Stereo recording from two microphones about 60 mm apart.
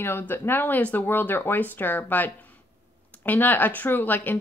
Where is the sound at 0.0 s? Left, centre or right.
Left.